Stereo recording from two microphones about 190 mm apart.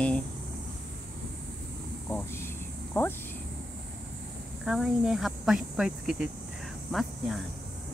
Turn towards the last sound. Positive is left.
turn(degrees=0)  # may be behind; listen again after turning